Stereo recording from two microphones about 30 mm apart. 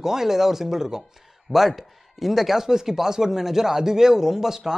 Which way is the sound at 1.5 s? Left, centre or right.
Centre.